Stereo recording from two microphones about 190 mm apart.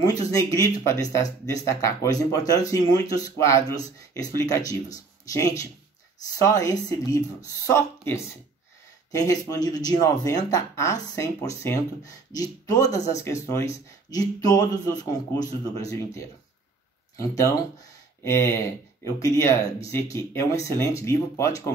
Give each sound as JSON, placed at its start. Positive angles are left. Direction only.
{"t": 0.0, "sound": "speech", "side_deg": 20}